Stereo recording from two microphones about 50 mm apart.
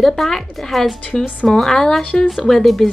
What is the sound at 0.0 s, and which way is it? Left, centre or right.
Speech, centre.